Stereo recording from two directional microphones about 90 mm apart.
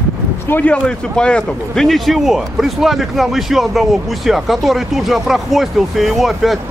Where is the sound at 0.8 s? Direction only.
10° left (ahead or behind).